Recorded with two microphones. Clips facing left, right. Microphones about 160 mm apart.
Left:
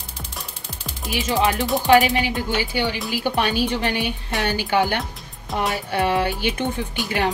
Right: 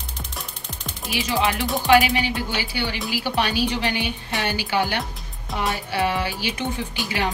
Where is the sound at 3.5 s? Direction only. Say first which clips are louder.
Left 1 dB; 50° left (ahead or behind).